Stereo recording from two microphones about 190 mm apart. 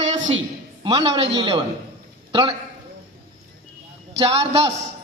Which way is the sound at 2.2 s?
25° right (ahead or behind).